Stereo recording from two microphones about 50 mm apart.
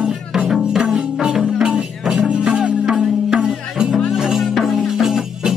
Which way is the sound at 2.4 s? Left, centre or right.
Centre.